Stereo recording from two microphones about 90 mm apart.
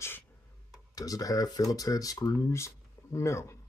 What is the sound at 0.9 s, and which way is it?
Speech, 40° left (ahead or behind).